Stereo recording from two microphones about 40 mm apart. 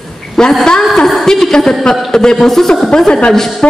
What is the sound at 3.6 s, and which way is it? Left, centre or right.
Music, left.